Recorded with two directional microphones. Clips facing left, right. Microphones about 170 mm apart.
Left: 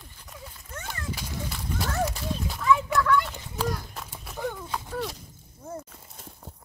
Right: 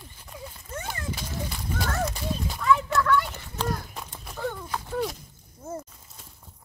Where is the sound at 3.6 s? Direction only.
5° left (ahead or behind).